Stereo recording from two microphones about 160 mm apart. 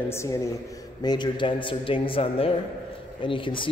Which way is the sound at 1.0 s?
30° left (ahead or behind).